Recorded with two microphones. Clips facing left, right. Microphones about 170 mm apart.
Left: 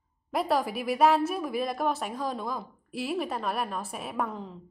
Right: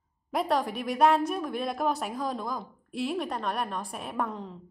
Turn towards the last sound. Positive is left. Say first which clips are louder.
# even
turn(degrees=0)  # may be behind; listen again after turning